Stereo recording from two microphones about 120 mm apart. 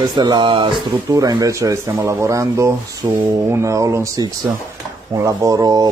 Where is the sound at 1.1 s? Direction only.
30° right (ahead or behind).